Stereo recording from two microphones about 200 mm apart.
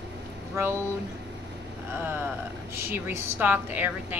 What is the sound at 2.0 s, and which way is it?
A woman's voice, 10° right (ahead or behind).